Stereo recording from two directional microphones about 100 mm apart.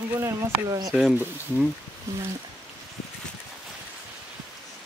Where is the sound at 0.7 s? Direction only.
40° right (ahead or behind).